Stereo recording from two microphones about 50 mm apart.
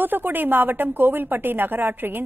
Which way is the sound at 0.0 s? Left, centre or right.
Right.